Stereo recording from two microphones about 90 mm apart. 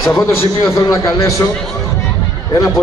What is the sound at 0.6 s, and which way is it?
Speech, 35° left (ahead or behind).